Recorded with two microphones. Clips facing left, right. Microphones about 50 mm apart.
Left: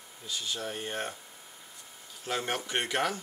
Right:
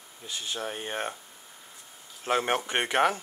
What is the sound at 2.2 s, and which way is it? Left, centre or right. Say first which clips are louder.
Speech: right 6 dB; right.